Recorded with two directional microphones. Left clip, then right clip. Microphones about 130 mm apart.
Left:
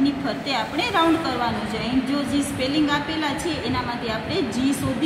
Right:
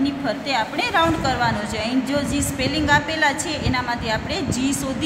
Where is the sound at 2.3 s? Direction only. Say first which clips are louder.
Even; 90° right.